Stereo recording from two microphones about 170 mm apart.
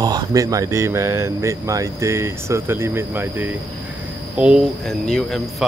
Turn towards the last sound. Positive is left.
turn(degrees=0)  # may be behind; listen again after turning